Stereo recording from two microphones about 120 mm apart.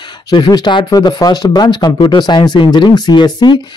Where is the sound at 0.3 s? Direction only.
35° left (ahead or behind).